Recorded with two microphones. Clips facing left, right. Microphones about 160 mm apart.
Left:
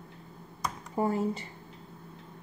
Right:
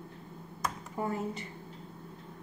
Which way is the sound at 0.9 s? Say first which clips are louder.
Left 7 dB; 30° left (ahead or behind).